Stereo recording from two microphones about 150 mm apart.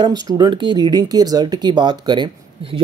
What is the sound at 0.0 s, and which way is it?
Speech, 25° right (ahead or behind).